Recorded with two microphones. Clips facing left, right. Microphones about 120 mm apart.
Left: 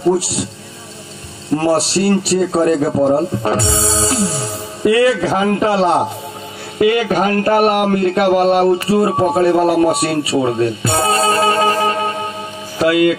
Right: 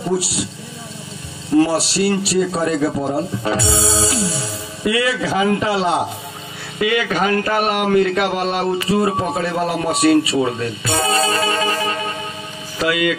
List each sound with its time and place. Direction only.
1.6 s a man's voice: 45° left (ahead or behind)